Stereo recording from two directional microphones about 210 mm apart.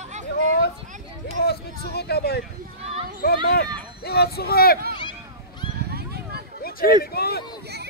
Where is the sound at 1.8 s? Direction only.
50° left (ahead or behind).